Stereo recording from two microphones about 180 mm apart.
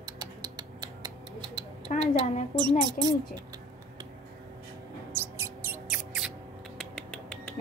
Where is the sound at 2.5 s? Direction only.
20° right (ahead or behind).